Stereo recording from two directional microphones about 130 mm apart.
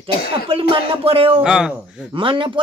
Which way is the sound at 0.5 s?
45° right (ahead or behind).